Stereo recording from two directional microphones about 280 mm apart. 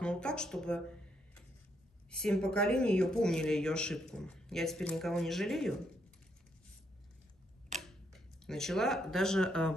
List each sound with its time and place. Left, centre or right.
0.0 s speech: centre
2.0 s speech: centre
7.7 s tick-tock: right
8.1 s speech: centre